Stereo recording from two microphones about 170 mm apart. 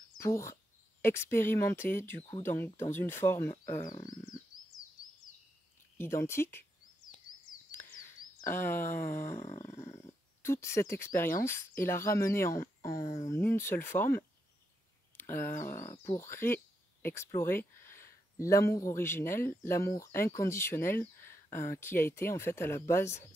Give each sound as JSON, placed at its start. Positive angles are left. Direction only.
{"t": 0.2, "sound": "speech", "side_deg": 15}
{"t": 3.7, "sound": "speech", "side_deg": 45}
{"t": 5.9, "sound": "speech", "side_deg": 15}
{"t": 8.0, "sound": "a sound", "side_deg": 15}
{"t": 10.9, "sound": "speech", "side_deg": 15}